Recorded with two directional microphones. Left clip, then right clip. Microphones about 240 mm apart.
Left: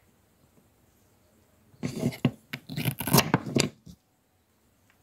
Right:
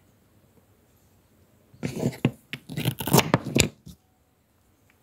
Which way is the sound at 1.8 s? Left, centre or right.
Centre.